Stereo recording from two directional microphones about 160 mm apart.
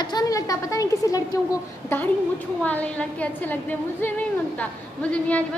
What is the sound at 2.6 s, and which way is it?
A woman's voice, 10° left (ahead or behind).